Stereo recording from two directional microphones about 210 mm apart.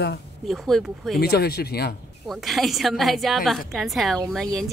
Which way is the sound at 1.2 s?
50° left (ahead or behind).